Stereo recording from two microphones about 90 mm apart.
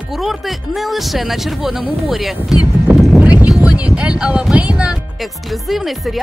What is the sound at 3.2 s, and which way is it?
Music, 10° right (ahead or behind).